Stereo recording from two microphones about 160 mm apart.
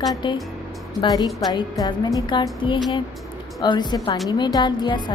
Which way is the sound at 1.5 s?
25° left (ahead or behind).